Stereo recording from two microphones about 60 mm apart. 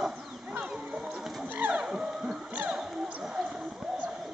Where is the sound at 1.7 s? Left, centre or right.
Centre.